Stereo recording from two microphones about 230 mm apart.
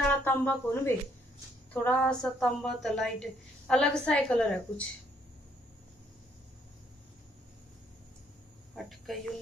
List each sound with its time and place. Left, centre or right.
0.1 s a woman's voice: centre
8.8 s a woman's voice: centre